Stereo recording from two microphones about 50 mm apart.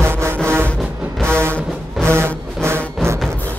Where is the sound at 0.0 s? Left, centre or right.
Right.